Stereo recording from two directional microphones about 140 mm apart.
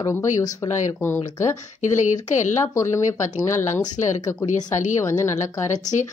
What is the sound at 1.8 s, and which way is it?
Speech, 60° left (ahead or behind).